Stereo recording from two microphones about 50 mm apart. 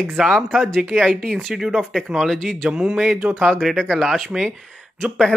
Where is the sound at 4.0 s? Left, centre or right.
Centre.